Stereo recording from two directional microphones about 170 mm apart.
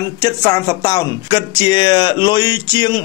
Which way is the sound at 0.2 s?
20° left (ahead or behind).